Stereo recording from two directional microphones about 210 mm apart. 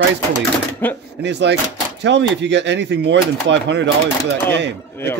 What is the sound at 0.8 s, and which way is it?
Speech, 10° left (ahead or behind).